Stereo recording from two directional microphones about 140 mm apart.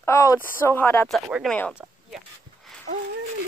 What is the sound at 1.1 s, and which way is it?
Speech, 5° right (ahead or behind).